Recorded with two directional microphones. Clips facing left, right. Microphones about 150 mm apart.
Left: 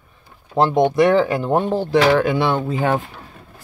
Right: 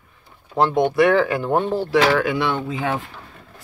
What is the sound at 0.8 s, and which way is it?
Speech, 20° left (ahead or behind).